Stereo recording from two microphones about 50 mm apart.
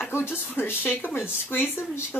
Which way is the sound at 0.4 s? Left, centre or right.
Left.